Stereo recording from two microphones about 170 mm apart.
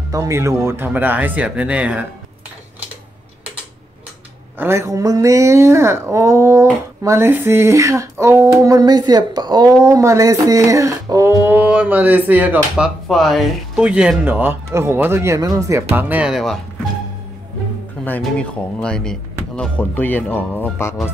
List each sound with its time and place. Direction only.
0.1 s speech: 20° right (ahead or behind)
4.6 s speech: 15° right (ahead or behind)
18.0 s speech: 10° left (ahead or behind)